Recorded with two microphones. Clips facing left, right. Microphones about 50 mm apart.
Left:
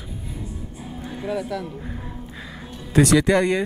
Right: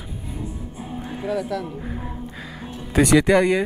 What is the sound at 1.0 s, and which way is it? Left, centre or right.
Music, centre.